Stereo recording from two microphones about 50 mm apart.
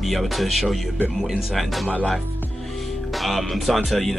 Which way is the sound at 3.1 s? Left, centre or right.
Centre.